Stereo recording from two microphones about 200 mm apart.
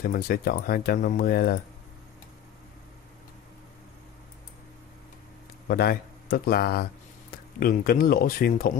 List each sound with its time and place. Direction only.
0.0 s speech: 45° left (ahead or behind)
5.7 s speech: 50° left (ahead or behind)